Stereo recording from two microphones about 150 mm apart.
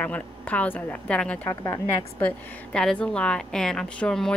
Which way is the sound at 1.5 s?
20° left (ahead or behind).